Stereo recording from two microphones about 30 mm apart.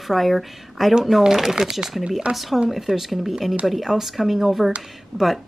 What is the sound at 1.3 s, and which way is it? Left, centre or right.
Speech, centre.